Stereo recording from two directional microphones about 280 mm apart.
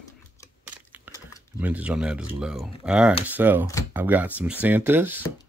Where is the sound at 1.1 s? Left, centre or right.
Centre.